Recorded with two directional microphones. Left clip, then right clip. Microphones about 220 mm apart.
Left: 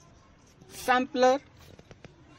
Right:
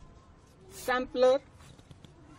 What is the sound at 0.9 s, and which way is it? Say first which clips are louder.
Speech: left 2 dB; 35° left (ahead or behind).